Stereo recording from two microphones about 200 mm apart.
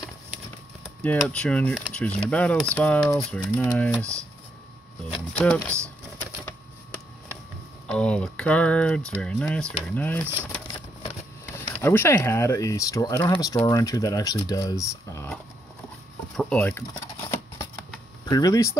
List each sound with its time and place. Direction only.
1.0 s speech: 5° left (ahead or behind)
5.3 s speech: 5° left (ahead or behind)
7.9 s speech: 5° left (ahead or behind)
11.8 s speech: 10° left (ahead or behind)
16.3 s shuffling cards: 5° left (ahead or behind)
18.2 s speech: 20° left (ahead or behind)